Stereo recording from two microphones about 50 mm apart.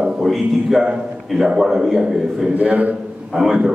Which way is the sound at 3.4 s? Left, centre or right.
Centre.